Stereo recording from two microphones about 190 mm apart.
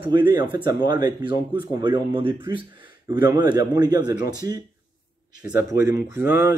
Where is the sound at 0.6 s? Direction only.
20° right (ahead or behind).